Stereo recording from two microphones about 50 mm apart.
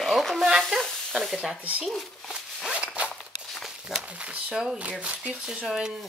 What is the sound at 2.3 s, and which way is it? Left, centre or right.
Zipper, centre.